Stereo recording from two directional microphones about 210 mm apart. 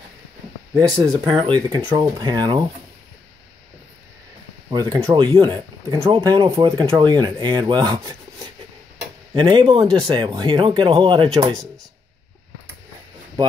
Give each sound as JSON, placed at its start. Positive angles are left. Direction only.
{"t": 0.7, "sound": "speech", "side_deg": -20}
{"t": 4.6, "sound": "speech", "side_deg": -15}